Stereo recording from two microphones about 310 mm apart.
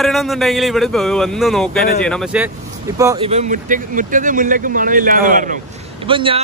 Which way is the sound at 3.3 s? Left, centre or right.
Right.